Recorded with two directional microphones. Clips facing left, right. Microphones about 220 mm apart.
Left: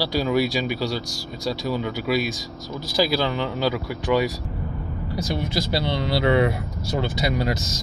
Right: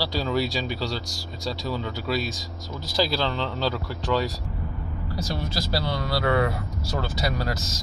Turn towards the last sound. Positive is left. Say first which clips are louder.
# left 4 dB
turn(degrees=20)  # may be behind; listen again after turning